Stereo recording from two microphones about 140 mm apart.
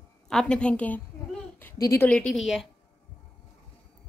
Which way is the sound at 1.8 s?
20° left (ahead or behind).